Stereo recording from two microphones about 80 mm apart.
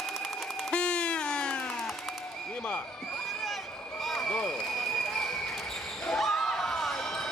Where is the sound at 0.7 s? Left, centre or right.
Centre.